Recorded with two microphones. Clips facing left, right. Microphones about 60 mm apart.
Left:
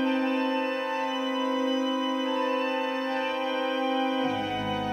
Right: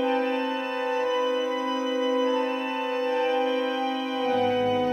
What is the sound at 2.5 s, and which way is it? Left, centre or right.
Music, centre.